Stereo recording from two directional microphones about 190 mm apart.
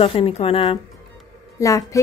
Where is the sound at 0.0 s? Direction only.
30° left (ahead or behind).